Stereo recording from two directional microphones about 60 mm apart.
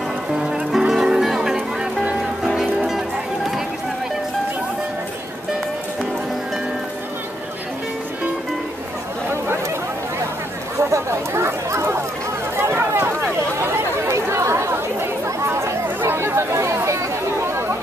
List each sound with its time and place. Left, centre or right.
0.3 s music: centre
10.8 s chatter: right
12.5 s a sound: right
13.6 s chatter: right